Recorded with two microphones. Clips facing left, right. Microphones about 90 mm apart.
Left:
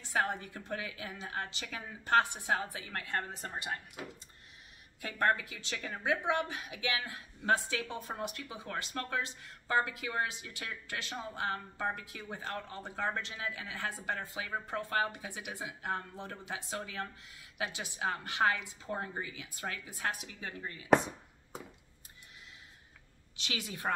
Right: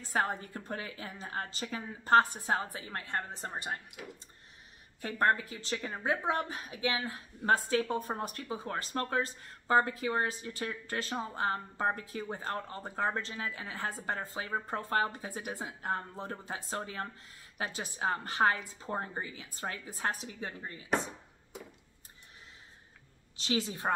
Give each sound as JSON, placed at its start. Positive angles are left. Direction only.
{"t": 0.0, "sound": "speech", "side_deg": -40}
{"t": 5.0, "sound": "speech", "side_deg": -35}
{"t": 23.3, "sound": "speech", "side_deg": -30}